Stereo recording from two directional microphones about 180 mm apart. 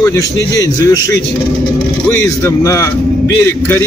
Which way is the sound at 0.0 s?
15° left (ahead or behind).